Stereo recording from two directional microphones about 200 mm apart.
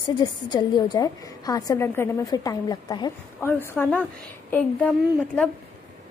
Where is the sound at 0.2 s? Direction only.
20° left (ahead or behind).